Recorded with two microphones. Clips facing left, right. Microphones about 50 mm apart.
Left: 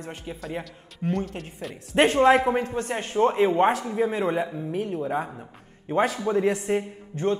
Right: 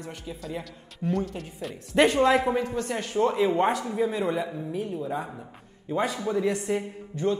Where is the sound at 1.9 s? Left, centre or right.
Left.